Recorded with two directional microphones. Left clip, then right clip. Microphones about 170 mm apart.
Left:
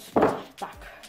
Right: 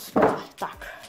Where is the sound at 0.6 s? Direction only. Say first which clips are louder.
Right 4 dB; 30° right (ahead or behind).